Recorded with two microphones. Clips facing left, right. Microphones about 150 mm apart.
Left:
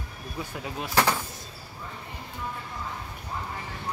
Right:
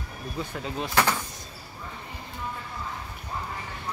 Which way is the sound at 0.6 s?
10° left (ahead or behind).